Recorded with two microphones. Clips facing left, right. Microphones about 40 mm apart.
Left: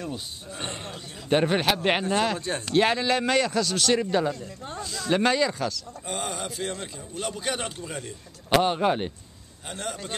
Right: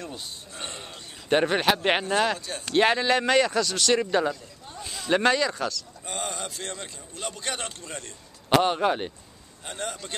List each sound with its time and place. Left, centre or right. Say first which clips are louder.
0.0 s a man's voice: left 3 dB; centre
2.3 s speech: left 5 dB; left
2.6 s a man's voice: right 1 dB; centre
4.8 s a sound: left 1 dB; centre
5.1 s a man's voice: right 1 dB; centre